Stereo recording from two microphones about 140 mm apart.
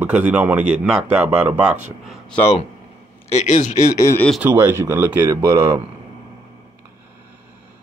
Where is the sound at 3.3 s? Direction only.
60° left (ahead or behind).